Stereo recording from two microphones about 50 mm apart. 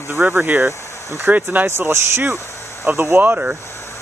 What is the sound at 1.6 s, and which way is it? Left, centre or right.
Speech, right.